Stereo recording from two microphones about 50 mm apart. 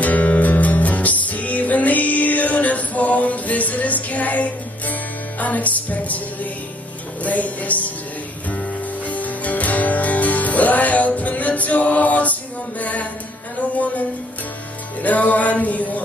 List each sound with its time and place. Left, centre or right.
0.0 s music: left